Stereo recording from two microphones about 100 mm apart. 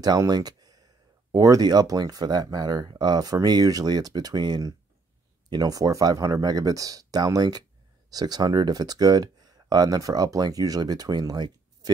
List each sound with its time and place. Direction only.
0.0 s speech: 45° right (ahead or behind)